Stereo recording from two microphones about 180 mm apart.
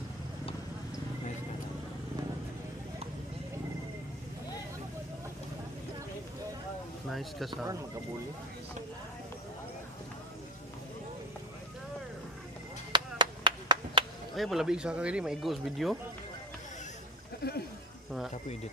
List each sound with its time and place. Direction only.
7.1 s speech: centre (ahead or behind)
12.9 s clapping: 25° right (ahead or behind)
14.3 s speech: centre (ahead or behind)
17.4 s a sound: 60° left (ahead or behind)